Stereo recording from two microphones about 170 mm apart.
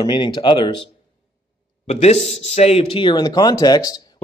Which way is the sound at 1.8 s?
40° left (ahead or behind).